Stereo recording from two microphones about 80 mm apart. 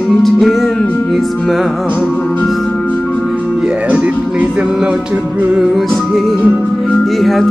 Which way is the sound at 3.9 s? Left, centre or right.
Centre.